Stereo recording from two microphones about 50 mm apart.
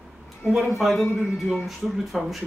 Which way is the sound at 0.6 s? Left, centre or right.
Centre.